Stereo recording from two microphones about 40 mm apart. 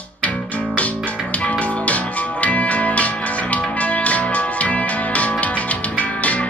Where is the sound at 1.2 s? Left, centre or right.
Left.